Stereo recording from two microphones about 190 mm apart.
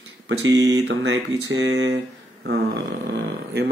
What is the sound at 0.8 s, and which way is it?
Speech, 70° right (ahead or behind).